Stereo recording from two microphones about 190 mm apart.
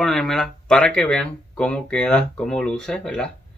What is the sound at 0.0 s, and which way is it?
Speech, centre (ahead or behind).